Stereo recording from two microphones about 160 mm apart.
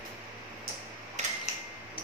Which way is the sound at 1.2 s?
45° right (ahead or behind).